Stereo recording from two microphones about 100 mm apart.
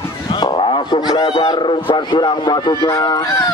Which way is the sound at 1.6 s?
55° left (ahead or behind).